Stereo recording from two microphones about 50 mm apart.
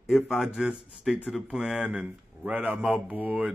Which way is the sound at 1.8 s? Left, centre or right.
Right.